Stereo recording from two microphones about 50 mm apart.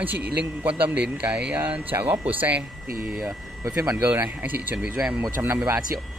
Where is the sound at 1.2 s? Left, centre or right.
Right.